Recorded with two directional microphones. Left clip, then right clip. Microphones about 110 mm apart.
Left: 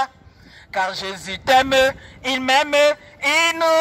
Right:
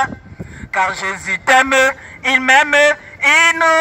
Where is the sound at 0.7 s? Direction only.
35° left (ahead or behind).